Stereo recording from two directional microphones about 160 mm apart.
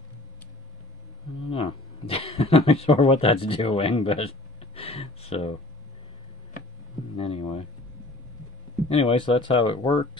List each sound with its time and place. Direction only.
1.5 s a sound: 35° left (ahead or behind)
7.2 s speech: 35° left (ahead or behind)
8.8 s speech: 35° left (ahead or behind)